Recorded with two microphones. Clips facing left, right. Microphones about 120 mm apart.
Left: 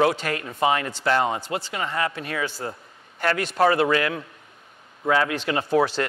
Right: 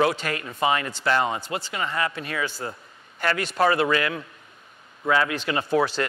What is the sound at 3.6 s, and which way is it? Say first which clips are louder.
A man's voice: left 2 dB; 45° left (ahead or behind).